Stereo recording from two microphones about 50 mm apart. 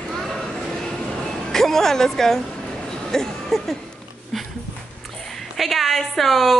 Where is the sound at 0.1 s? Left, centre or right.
Centre.